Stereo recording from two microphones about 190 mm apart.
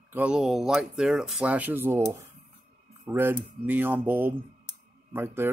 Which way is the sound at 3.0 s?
10° right (ahead or behind).